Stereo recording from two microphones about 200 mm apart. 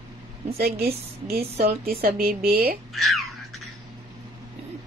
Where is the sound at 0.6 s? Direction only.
50° right (ahead or behind).